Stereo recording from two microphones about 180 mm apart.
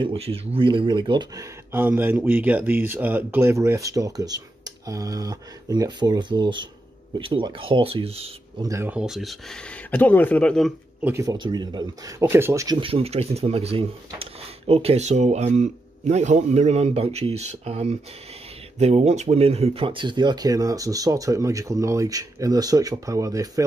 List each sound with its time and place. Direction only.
0.0 s speech: 30° right (ahead or behind)
1.7 s speech: 10° right (ahead or behind); by 8.6 s 30° right (ahead or behind)
8.6 s speech: 15° right (ahead or behind); by 10.7 s 5° left (ahead or behind)
11.0 s speech: 10° right (ahead or behind)
11.2 s speech: 25° right (ahead or behind)